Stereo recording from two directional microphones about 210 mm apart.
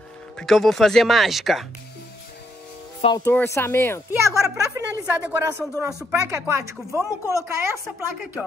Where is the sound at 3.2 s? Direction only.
10° left (ahead or behind).